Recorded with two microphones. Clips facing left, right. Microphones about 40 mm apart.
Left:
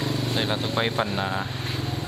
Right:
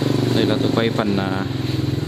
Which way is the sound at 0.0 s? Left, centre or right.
Right.